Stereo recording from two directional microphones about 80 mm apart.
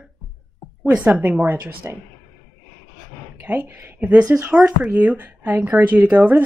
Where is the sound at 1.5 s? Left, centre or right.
Right.